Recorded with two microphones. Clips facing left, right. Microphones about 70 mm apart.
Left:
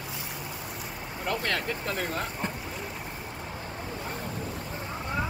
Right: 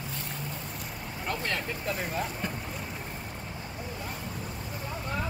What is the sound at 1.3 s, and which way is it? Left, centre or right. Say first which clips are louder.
Vehicle: left 3 dB; left.